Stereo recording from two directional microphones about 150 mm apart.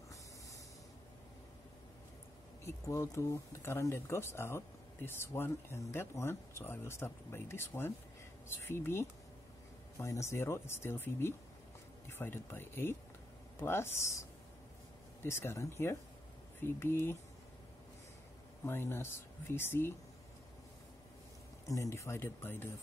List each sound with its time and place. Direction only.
2.6 s speech: 20° left (ahead or behind)
15.2 s speech: 15° left (ahead or behind)
18.7 s speech: 15° left (ahead or behind)
21.6 s speech: 20° left (ahead or behind)